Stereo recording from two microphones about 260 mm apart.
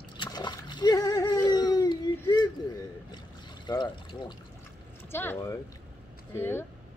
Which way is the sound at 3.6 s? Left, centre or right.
Centre.